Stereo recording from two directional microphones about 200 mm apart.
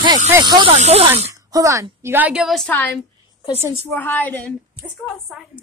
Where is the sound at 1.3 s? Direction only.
15° right (ahead or behind); by 2.9 s 5° left (ahead or behind).